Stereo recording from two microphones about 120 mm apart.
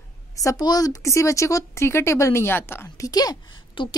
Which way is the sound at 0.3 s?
25° left (ahead or behind).